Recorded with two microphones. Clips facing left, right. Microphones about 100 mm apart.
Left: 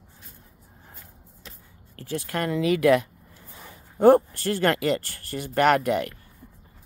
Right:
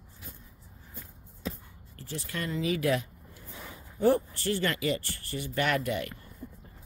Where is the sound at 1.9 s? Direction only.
60° left (ahead or behind).